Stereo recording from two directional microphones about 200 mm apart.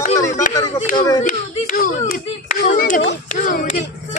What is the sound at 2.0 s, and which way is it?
Speech, 45° left (ahead or behind).